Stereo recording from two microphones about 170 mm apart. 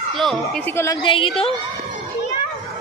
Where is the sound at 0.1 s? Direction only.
Centre (ahead or behind).